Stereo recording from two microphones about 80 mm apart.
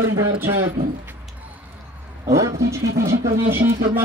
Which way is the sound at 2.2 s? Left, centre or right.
Right.